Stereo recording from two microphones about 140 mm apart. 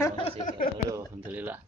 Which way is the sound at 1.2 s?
10° right (ahead or behind).